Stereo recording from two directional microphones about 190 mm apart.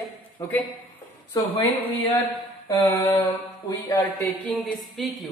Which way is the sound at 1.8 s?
10° left (ahead or behind).